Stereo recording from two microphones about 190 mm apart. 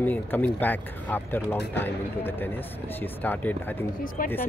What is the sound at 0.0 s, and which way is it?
Speech, 10° left (ahead or behind).